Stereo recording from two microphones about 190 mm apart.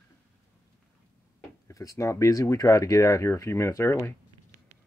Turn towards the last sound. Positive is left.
turn(degrees=15)  # may be behind; listen again after turning